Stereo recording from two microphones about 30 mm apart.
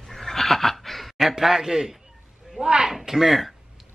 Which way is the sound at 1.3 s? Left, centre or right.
Centre.